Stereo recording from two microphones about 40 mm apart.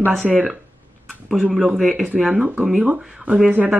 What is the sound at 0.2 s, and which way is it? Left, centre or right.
Speech, centre.